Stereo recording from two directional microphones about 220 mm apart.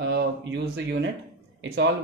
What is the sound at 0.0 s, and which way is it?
Speech, 50° right (ahead or behind).